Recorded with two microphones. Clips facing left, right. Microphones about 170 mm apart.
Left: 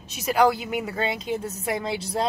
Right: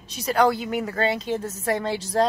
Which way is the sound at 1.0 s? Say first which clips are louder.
Right 3 dB; 35° right (ahead or behind).